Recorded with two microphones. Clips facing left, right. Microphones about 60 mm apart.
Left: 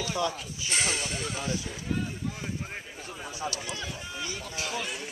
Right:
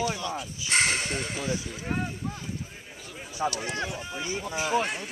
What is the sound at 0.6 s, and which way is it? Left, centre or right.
Speech, right.